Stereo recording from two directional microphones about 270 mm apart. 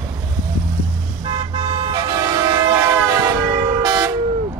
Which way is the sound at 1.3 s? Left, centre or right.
Centre.